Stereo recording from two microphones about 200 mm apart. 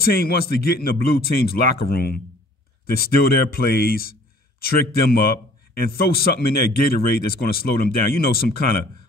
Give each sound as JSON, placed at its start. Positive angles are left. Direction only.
{"t": 0.0, "sound": "speech", "side_deg": 50}